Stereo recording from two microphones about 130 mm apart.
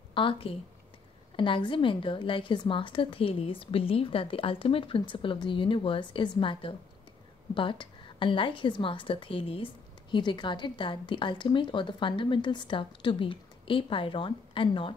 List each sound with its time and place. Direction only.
0.1 s a woman's voice: 40° left (ahead or behind)